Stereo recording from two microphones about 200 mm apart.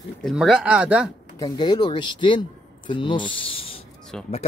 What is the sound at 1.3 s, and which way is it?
Speech, 20° left (ahead or behind).